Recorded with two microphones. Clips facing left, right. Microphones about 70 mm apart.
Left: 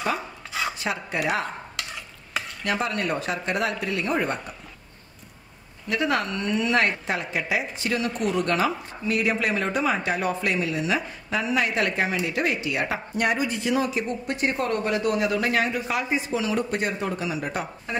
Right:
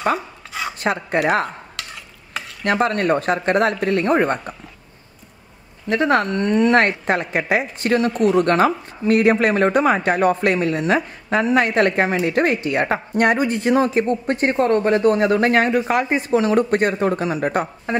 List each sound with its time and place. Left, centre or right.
0.5 s a sound: centre
0.7 s speech: right
2.6 s speech: right
5.9 s speech: right